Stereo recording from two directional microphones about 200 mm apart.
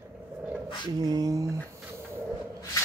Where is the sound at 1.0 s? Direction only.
20° right (ahead or behind).